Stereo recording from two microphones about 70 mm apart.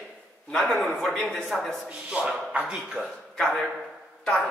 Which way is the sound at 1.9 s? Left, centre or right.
Centre.